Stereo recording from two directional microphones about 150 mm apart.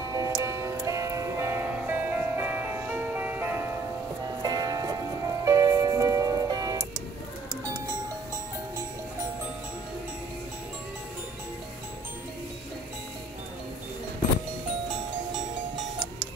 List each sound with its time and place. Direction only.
0.1 s music: 20° right (ahead or behind)
4.4 s music: 25° right (ahead or behind)